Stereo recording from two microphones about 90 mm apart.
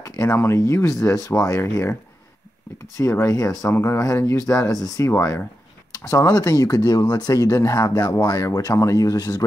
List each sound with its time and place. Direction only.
0.0 s a sound: 40° left (ahead or behind)
0.4 s speech: 35° left (ahead or behind)
3.0 s speech: 35° left (ahead or behind)
3.7 s speech: 25° left (ahead or behind); by 9.4 s 45° left (ahead or behind)